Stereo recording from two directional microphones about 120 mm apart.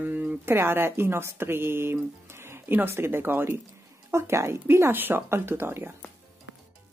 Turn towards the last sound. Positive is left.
turn(degrees=-20)  # may be behind; listen again after turning